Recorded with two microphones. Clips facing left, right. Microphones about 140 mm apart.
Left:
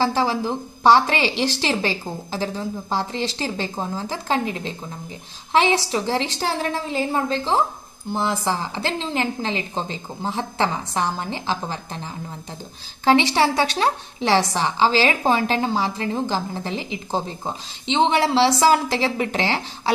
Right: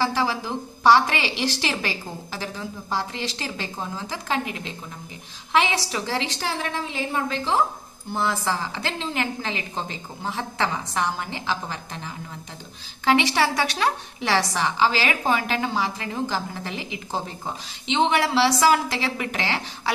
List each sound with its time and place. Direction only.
0.0 s a woman's voice: 30° left (ahead or behind)